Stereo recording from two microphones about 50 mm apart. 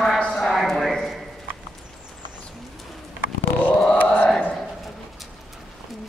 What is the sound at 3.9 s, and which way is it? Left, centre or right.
Chant, left.